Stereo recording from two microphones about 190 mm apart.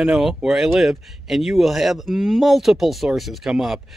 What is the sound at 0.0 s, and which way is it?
Speech, 5° right (ahead or behind).